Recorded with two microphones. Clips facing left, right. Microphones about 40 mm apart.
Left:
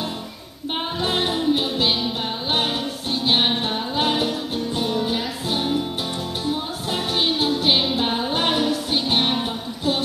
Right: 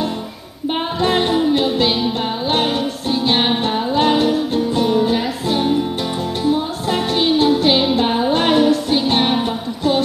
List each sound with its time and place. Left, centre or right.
1.0 s music: centre